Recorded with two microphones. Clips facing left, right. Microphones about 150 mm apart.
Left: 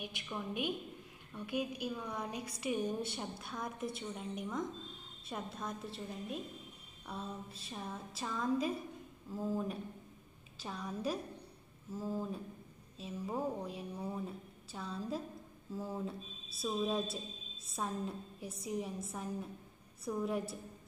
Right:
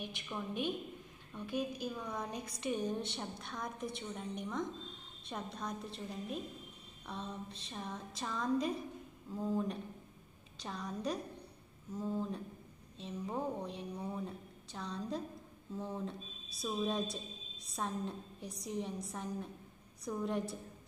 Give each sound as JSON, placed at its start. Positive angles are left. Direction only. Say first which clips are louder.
{"t": 0.0, "sound": "a woman's voice", "louder": "even", "side_deg": 5}